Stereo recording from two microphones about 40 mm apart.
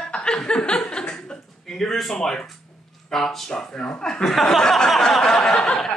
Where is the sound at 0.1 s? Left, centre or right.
Left.